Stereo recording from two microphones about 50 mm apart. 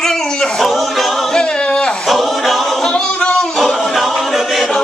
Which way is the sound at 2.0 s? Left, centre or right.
Centre.